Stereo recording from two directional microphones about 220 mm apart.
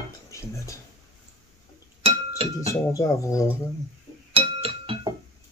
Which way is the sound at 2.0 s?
25° right (ahead or behind).